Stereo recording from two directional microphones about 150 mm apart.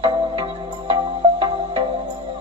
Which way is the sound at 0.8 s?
35° right (ahead or behind).